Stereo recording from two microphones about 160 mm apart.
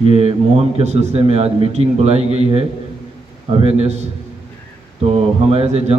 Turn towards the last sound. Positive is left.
turn(degrees=-40)  # may be behind; listen again after turning